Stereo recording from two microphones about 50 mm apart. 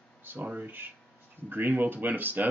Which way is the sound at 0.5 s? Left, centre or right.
Right.